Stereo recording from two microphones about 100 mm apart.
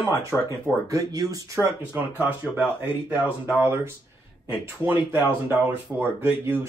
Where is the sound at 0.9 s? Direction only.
35° right (ahead or behind).